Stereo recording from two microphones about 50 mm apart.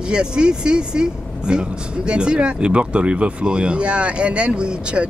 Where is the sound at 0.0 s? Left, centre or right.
Centre.